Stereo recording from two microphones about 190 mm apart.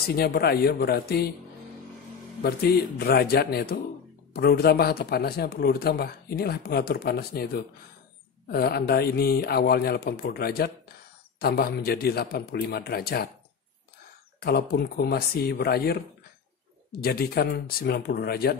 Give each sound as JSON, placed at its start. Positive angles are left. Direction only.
{"t": 0.1, "sound": "speech", "side_deg": 55}
{"t": 2.4, "sound": "speech", "side_deg": 55}
{"t": 14.4, "sound": "speech", "side_deg": 55}